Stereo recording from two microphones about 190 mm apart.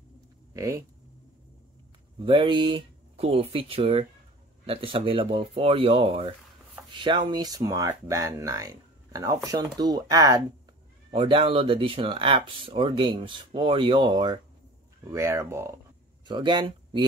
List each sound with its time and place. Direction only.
0.5 s speech: 15° right (ahead or behind)
2.2 s speech: 25° right (ahead or behind)
15.0 s speech: 15° right (ahead or behind)
16.3 s speech: 25° right (ahead or behind)